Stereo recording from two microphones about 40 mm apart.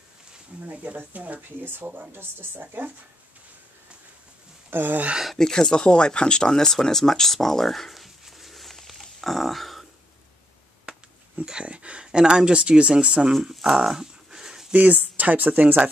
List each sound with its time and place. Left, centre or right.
0.7 s speech: right
1.6 s speech: right
4.6 s speech: right
5.4 s speech: centre
9.2 s a sound: centre
10.9 s speech: right
13.5 s a sound: centre
14.7 s speech: right